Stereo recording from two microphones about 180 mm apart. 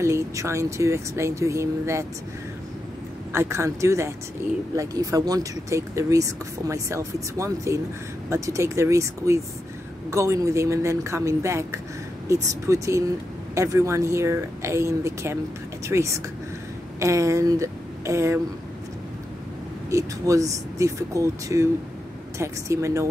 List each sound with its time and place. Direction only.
0.0 s speech: 15° right (ahead or behind)
3.3 s speech: 15° right (ahead or behind)
19.9 s speech: 15° right (ahead or behind)